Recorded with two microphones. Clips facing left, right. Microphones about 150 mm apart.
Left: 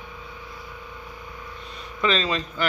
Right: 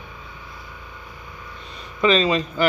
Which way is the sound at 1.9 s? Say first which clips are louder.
Right 6 dB; 5° right (ahead or behind).